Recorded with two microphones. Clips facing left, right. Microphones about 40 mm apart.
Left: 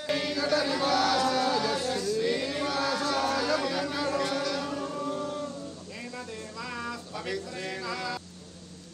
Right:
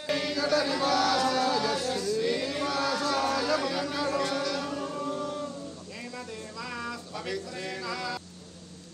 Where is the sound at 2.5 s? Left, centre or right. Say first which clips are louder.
Even; centre.